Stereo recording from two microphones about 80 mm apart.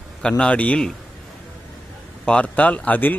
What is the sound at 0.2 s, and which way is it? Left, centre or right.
Speech, centre.